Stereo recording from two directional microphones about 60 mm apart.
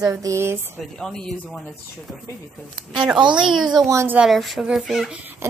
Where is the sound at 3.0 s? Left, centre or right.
Centre.